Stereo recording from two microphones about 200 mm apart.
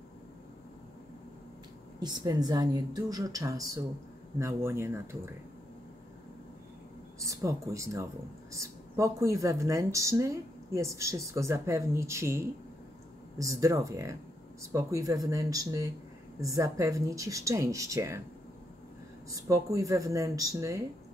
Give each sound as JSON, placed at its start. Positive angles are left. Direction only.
{"t": 2.0, "sound": "a woman's voice", "side_deg": -20}
{"t": 7.2, "sound": "speech", "side_deg": -15}
{"t": 19.3, "sound": "speech", "side_deg": -15}